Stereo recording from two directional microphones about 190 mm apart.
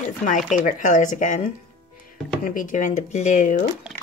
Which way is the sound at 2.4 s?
45° left (ahead or behind).